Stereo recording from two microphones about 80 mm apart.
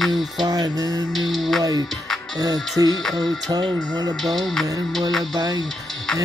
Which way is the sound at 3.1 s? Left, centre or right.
Centre.